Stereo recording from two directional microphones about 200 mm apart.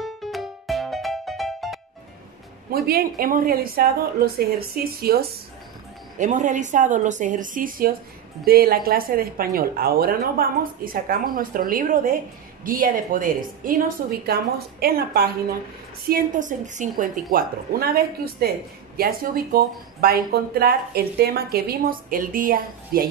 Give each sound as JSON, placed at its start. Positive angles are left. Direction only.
{"t": 0.0, "sound": "music", "side_deg": 0}
{"t": 2.7, "sound": "speech", "side_deg": -50}
{"t": 6.1, "sound": "a woman's voice", "side_deg": -40}